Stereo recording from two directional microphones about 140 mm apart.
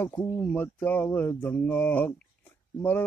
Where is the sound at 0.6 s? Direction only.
15° left (ahead or behind).